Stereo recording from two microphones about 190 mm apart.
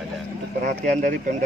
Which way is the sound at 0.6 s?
40° right (ahead or behind).